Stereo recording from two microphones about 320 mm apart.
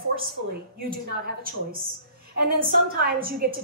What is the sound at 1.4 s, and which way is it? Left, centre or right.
A woman's voice, right.